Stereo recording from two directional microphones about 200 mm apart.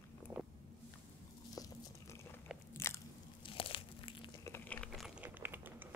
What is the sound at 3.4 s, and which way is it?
Crumpling, 25° left (ahead or behind).